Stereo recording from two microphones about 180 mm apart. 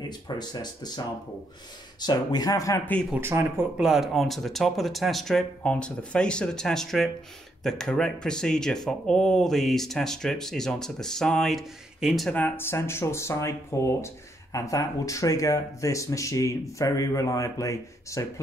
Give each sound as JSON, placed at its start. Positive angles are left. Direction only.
{"t": 0.0, "sound": "speech", "side_deg": 25}
{"t": 2.9, "sound": "speech", "side_deg": 5}
{"t": 3.2, "sound": "speech", "side_deg": -15}